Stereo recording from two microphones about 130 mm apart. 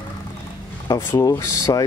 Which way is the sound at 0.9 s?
20° left (ahead or behind).